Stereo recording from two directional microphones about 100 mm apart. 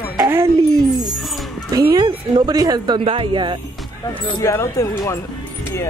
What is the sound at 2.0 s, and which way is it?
A woman's voice, 45° right (ahead or behind).